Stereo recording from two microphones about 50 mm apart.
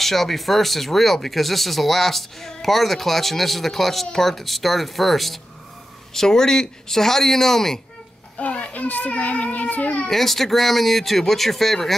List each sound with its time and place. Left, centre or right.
0.0 s speech: centre
8.4 s a child's voice: left
10.0 s speech: centre